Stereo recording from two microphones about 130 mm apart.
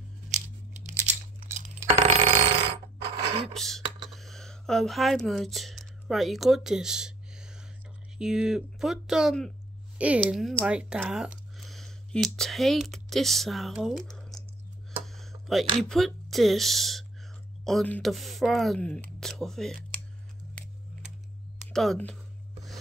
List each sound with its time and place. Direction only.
0.8 s crunch: 65° right (ahead or behind)
2.0 s telephone bell ringing: 55° right (ahead or behind)
3.2 s a sound: 55° right (ahead or behind)
3.5 s speech: centre (ahead or behind)
4.1 s a sound: centre (ahead or behind)
8.2 s speech: 5° right (ahead or behind)
15.0 s speech: centre (ahead or behind)
21.7 s speech: 5° left (ahead or behind)